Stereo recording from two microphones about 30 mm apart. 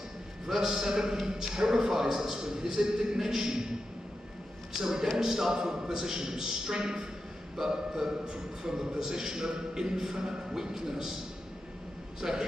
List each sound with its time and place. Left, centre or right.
0.6 s a man's voice: centre
4.7 s a man's voice: centre
12.2 s a man's voice: centre